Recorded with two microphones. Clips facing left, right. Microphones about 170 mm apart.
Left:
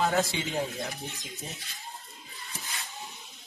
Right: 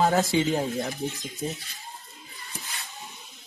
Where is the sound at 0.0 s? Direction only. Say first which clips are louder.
Right 4 dB; 40° right (ahead or behind).